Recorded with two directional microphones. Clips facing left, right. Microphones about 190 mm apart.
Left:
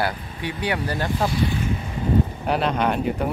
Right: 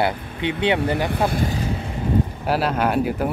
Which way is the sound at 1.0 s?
60° right (ahead or behind).